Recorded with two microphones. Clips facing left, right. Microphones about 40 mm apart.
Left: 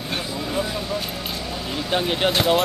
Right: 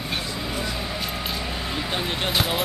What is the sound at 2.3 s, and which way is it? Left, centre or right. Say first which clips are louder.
Speech: left 5 dB; centre.